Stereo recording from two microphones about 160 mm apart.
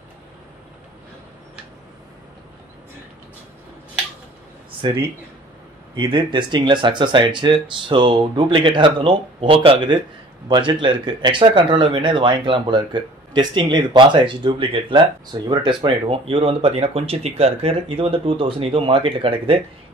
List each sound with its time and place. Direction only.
4.8 s speech: 30° right (ahead or behind)